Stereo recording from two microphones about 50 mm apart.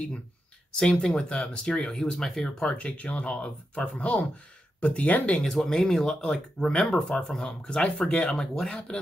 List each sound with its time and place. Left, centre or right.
0.7 s speech: left
5.4 s speech: centre